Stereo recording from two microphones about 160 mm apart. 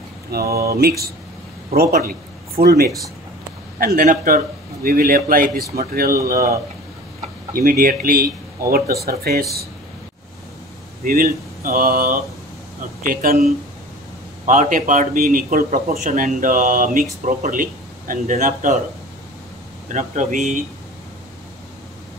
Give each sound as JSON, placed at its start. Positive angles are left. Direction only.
{"t": 0.3, "sound": "speech", "side_deg": -75}
{"t": 3.8, "sound": "speech", "side_deg": -55}
{"t": 7.5, "sound": "speech", "side_deg": -65}
{"t": 11.1, "sound": "speech", "side_deg": -65}
{"t": 14.4, "sound": "speech", "side_deg": -50}
{"t": 19.9, "sound": "speech", "side_deg": -55}